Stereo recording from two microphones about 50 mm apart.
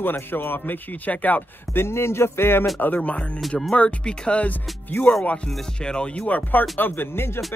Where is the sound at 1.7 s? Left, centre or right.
Left.